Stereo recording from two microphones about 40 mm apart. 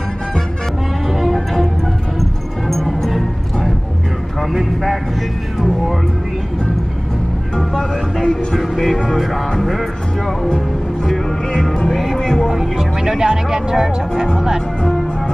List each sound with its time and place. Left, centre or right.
1.1 s music: centre
2.7 s music: centre
4.4 s a sound: centre
7.5 s speech: centre
8.5 s music: centre
9.5 s speech: centre
11.5 s speech: centre
11.9 s music: centre
12.2 s music: centre
13.2 s speech: centre